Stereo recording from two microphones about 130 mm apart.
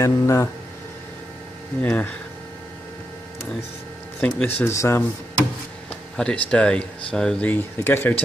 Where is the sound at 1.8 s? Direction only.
10° left (ahead or behind).